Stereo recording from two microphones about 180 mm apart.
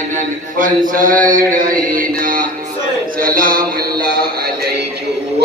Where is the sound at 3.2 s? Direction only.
50° right (ahead or behind).